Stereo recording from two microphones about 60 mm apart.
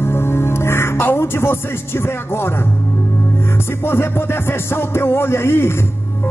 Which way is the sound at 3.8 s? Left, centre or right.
Left.